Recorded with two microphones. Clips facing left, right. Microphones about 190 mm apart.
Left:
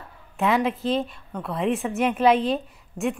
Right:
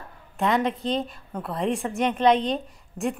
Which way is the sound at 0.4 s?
5° left (ahead or behind).